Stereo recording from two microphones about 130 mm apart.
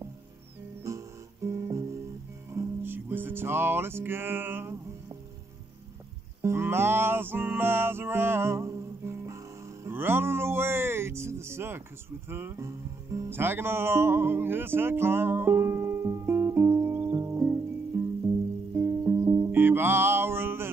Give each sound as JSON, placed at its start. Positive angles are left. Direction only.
{"t": 0.8, "sound": "music", "side_deg": -25}
{"t": 6.4, "sound": "music", "side_deg": -20}
{"t": 9.8, "sound": "speech", "side_deg": -15}
{"t": 12.3, "sound": "music", "side_deg": -15}